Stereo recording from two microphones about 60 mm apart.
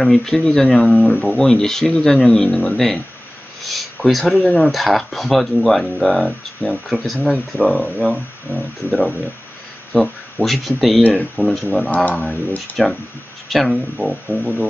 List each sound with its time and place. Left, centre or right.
0.0 s speech: centre
11.9 s speech: left
13.5 s speech: centre